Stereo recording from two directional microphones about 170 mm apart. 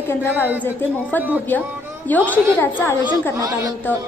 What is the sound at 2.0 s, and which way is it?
Speech, 10° left (ahead or behind).